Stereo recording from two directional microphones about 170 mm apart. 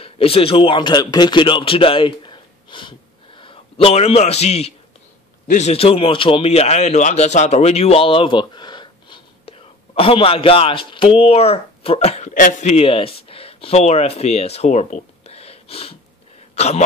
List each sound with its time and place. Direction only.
0.0 s a man's voice: 35° left (ahead or behind)